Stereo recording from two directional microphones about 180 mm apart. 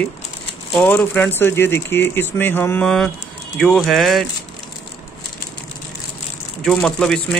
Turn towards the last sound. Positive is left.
turn(degrees=5)  # may be behind; listen again after turning